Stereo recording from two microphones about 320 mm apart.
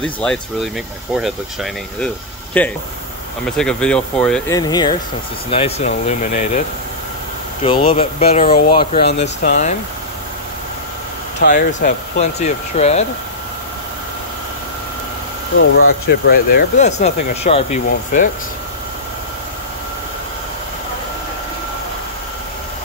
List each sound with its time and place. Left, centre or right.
0.0 s speech: centre; by 6.6 s left
7.6 s speech: centre
11.4 s speech: left
15.5 s speech: left